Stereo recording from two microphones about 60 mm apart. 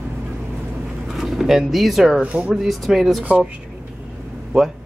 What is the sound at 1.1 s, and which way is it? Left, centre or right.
Speech, centre.